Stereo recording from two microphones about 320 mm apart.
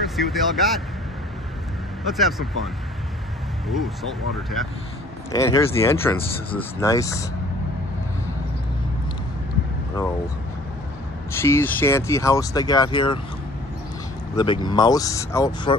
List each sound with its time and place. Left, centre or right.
0.0 s speech: centre
2.1 s speech: centre
5.3 s speech: centre
11.3 s speech: centre
14.3 s speech: centre